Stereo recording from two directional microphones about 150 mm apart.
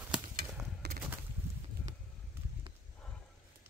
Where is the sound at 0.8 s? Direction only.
90° right.